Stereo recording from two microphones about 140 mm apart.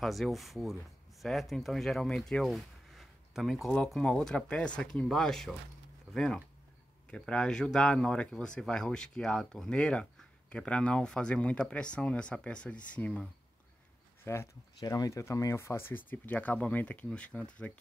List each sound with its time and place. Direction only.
0.0 s speech: centre (ahead or behind)